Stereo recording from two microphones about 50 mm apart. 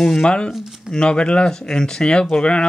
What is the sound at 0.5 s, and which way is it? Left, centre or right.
Speech, centre.